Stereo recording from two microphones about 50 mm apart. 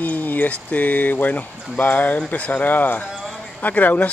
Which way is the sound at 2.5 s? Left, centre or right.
Left.